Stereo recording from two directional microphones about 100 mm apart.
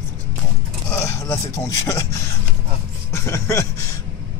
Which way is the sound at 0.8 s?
25° left (ahead or behind).